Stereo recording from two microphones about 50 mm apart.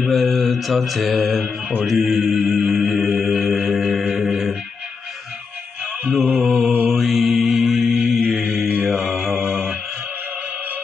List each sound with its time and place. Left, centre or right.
0.0 s mantra: centre
1.4 s mantra: right
1.9 s mantra: centre
2.5 s a capella: centre
6.3 s mantra: centre